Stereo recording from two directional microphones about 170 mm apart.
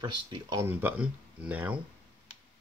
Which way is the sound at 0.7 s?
10° right (ahead or behind).